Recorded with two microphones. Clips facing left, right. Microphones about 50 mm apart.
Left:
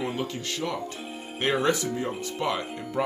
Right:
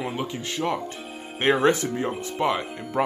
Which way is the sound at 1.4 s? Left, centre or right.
Right.